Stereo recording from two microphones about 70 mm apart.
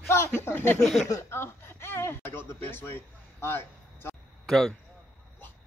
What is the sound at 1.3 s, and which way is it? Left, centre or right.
Speech, left.